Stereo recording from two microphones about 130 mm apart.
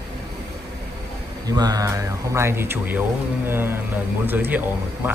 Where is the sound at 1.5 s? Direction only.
30° right (ahead or behind).